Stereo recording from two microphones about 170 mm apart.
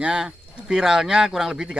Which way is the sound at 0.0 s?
5° right (ahead or behind).